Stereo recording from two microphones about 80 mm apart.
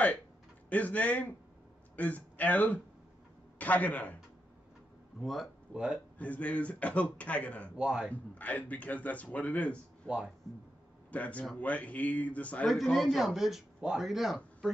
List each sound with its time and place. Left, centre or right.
0.7 s a man's voice: centre
5.2 s a man's voice: centre
5.7 s speech: centre
6.1 s a man's voice: centre
7.7 s a man's voice: centre
8.1 s a man's voice: centre
10.0 s a man's voice: centre
11.1 s a man's voice: centre
12.6 s a man's voice: centre